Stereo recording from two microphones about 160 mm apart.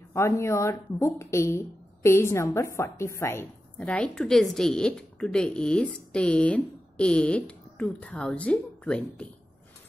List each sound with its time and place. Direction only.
0.1 s a woman's voice: 15° left (ahead or behind)